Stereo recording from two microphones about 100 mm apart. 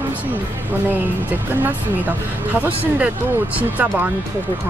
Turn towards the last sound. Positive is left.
turn(degrees=-15)  # may be behind; listen again after turning